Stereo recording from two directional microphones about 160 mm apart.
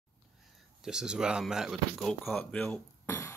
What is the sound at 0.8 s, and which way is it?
Speech, 5° right (ahead or behind).